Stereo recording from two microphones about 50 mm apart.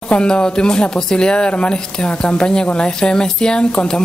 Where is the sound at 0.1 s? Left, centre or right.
Left.